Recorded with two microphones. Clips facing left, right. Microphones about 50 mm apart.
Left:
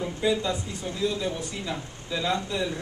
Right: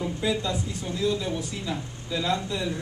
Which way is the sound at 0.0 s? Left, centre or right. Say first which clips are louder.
Left 1 dB; centre.